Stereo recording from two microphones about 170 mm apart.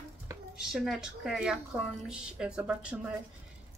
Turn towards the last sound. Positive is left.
turn(degrees=-5)  # may be behind; listen again after turning